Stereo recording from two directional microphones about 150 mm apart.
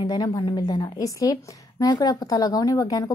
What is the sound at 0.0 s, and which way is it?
A woman's voice, 25° left (ahead or behind).